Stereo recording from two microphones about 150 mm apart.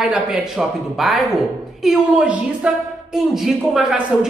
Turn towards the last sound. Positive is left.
turn(degrees=0)  # may be behind; listen again after turning